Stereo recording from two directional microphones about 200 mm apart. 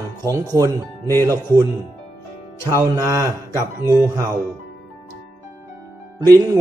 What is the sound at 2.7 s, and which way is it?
Speech, 15° right (ahead or behind).